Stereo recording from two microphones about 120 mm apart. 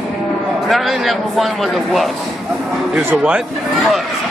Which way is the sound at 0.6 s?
Centre (ahead or behind).